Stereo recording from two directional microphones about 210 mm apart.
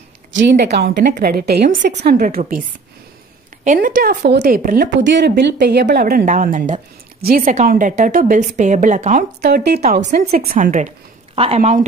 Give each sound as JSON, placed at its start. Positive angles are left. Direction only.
{"t": 0.3, "sound": "a woman's voice", "side_deg": -60}
{"t": 3.6, "sound": "a woman's voice", "side_deg": -40}
{"t": 4.8, "sound": "a woman's voice", "side_deg": -60}